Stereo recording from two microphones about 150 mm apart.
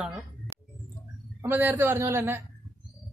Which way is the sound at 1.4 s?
10° right (ahead or behind).